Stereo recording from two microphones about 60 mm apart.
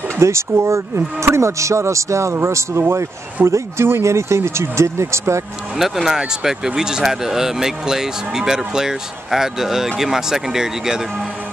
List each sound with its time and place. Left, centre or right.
0.2 s speech: right
5.8 s speech: centre